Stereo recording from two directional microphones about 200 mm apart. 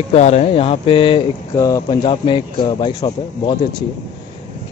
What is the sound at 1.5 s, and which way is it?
Speech, 15° left (ahead or behind).